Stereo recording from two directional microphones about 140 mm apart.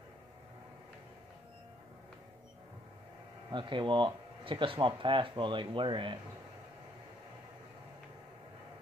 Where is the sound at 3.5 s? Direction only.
35° right (ahead or behind).